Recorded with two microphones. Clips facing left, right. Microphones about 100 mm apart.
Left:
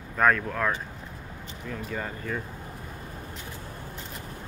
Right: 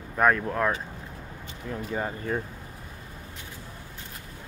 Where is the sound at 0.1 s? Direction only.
15° right (ahead or behind).